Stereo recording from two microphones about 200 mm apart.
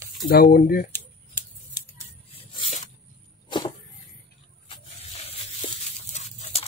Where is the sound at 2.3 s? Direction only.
30° left (ahead or behind).